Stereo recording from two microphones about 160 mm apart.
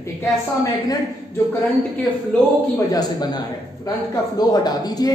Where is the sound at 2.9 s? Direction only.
25° left (ahead or behind).